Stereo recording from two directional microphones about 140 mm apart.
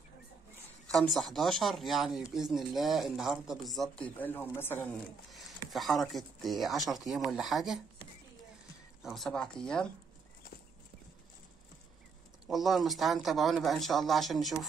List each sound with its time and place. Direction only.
0.8 s speech: centre (ahead or behind)
4.9 s speech: centre (ahead or behind)
9.0 s speech: centre (ahead or behind)
12.4 s speech: centre (ahead or behind)